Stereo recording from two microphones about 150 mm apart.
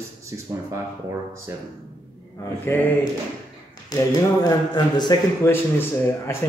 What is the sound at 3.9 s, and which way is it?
Speech, 25° left (ahead or behind).